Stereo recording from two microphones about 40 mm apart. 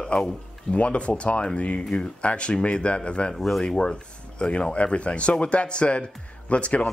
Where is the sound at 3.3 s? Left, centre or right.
Centre.